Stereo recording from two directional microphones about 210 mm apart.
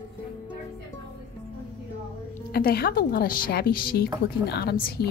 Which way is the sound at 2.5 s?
45° left (ahead or behind).